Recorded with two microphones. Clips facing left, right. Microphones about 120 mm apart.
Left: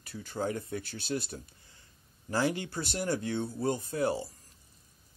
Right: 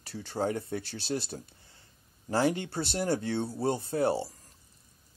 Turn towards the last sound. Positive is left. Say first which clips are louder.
# right 3 dB
turn(degrees=-30)  # may be behind; listen again after turning